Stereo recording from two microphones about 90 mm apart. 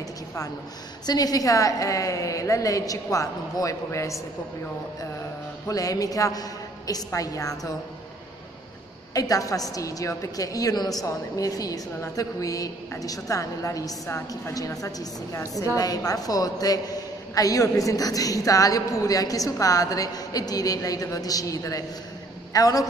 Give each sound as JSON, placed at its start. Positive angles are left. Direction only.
{"t": 1.0, "sound": "a woman's voice", "side_deg": 45}
{"t": 5.7, "sound": "a woman's voice", "side_deg": 40}
{"t": 9.1, "sound": "a woman's voice", "side_deg": 40}